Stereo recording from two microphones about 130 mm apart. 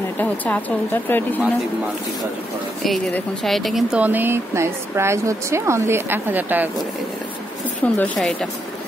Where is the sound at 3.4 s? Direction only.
Centre (ahead or behind).